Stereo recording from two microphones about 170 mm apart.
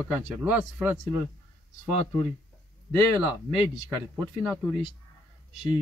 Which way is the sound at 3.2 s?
10° right (ahead or behind).